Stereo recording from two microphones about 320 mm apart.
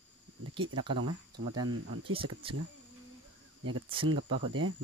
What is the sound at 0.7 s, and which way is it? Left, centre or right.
Speech, centre.